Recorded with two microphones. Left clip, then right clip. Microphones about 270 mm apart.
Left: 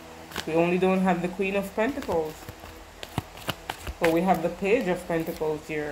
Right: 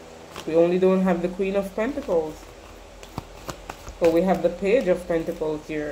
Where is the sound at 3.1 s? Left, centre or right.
Centre.